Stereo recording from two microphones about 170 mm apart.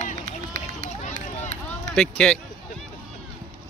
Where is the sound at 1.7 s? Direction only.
5° left (ahead or behind).